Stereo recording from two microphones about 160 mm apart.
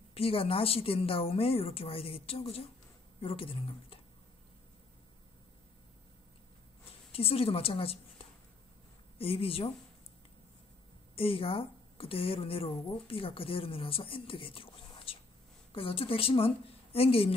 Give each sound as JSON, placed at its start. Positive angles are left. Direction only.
{"t": 0.1, "sound": "speech", "side_deg": 35}
{"t": 7.1, "sound": "a woman's voice", "side_deg": 35}
{"t": 11.1, "sound": "a woman's voice", "side_deg": 35}